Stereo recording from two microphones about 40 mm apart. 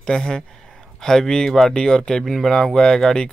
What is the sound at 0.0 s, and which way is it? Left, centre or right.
Speech, centre.